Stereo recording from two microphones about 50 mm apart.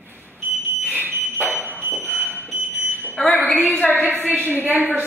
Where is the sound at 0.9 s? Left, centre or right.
Right.